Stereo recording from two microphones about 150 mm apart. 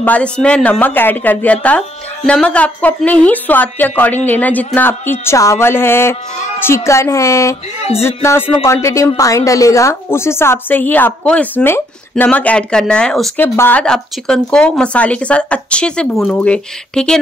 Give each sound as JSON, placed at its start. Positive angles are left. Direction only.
{"t": 0.0, "sound": "a woman's voice", "side_deg": 10}